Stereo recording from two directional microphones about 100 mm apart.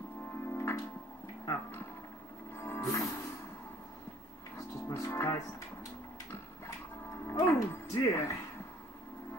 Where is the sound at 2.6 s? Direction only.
30° left (ahead or behind).